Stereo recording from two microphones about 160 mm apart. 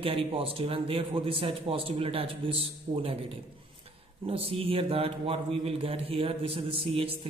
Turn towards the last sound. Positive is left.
turn(degrees=-35)  # may be behind; listen again after turning